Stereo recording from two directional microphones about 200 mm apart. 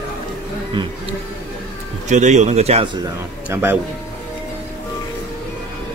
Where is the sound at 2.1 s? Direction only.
35° right (ahead or behind).